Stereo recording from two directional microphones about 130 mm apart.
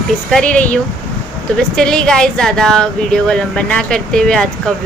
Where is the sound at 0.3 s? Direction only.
10° left (ahead or behind).